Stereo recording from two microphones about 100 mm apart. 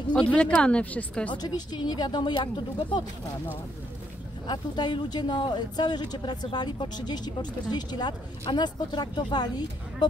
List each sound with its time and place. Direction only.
0.1 s speech: 10° left (ahead or behind)
1.3 s speech: 45° left (ahead or behind)
4.5 s speech: 50° left (ahead or behind)